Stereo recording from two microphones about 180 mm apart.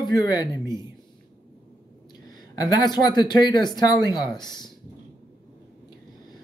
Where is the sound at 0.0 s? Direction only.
20° left (ahead or behind).